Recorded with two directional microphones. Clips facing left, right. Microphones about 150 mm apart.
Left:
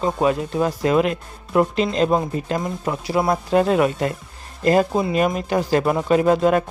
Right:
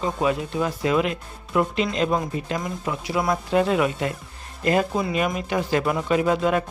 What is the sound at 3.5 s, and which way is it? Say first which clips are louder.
Speech: left 3 dB; 45° left (ahead or behind).